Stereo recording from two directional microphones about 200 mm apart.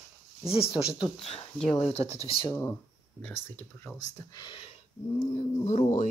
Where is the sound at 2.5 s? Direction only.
10° left (ahead or behind).